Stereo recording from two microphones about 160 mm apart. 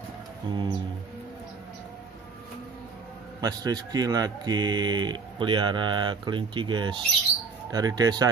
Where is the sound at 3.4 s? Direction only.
25° right (ahead or behind).